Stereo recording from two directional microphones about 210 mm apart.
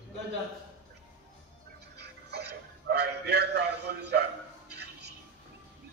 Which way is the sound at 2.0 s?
50° right (ahead or behind).